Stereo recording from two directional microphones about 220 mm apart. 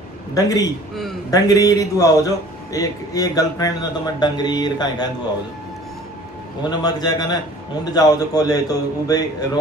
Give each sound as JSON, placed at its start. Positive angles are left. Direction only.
{"t": 0.3, "sound": "a man's voice", "side_deg": 15}
{"t": 6.8, "sound": "a man's voice", "side_deg": 20}